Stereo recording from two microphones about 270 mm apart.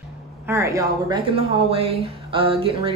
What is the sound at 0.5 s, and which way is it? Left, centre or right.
A woman's voice, centre.